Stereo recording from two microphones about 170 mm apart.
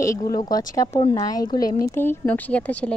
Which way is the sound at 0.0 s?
20° left (ahead or behind).